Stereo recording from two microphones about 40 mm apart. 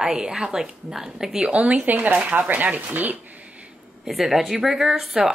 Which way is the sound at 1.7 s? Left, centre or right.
Right.